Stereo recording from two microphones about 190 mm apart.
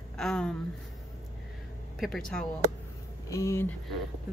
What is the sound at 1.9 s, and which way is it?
Speech, centre (ahead or behind).